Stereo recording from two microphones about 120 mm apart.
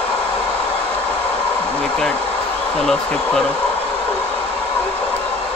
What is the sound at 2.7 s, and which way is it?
Speech, 5° left (ahead or behind).